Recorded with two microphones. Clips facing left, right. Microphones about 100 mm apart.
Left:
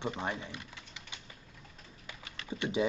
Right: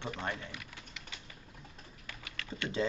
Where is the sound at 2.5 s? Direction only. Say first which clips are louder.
Left 3 dB; 15° left (ahead or behind).